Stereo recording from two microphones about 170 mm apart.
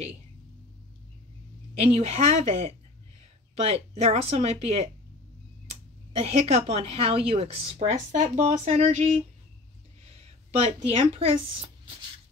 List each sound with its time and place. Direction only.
1.8 s a woman's voice: 35° right (ahead or behind)
6.1 s a woman's voice: 35° right (ahead or behind)
10.6 s a woman's voice: 35° right (ahead or behind)